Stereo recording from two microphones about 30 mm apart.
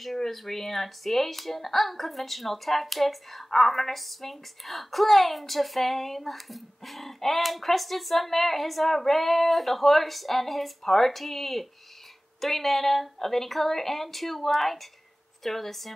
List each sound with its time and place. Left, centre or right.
0.0 s a woman's voice: centre